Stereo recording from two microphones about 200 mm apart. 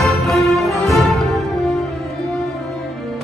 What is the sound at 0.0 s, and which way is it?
Music, centre (ahead or behind).